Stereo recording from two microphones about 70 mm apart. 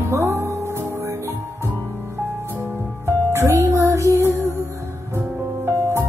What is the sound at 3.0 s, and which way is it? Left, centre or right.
Music, right.